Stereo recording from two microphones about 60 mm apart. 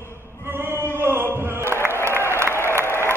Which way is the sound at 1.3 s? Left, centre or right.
Right.